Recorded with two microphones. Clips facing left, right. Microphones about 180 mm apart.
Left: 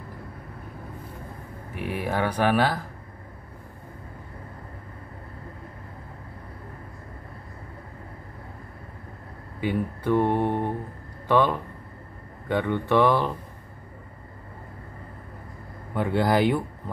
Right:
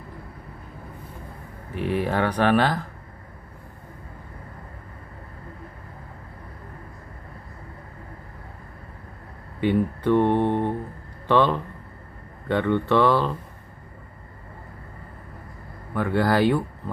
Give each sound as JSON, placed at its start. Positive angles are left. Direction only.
{"t": 1.8, "sound": "speech", "side_deg": 10}
{"t": 9.6, "sound": "speech", "side_deg": 10}
{"t": 15.9, "sound": "speech", "side_deg": 20}